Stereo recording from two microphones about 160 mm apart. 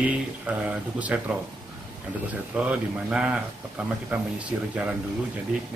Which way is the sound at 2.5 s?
5° right (ahead or behind).